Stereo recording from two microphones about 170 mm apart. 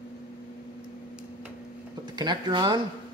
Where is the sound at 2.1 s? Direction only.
25° right (ahead or behind).